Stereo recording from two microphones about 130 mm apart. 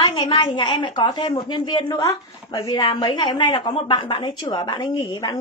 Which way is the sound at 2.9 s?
40° left (ahead or behind).